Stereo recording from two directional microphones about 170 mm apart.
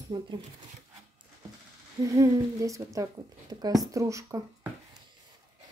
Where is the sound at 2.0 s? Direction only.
20° right (ahead or behind).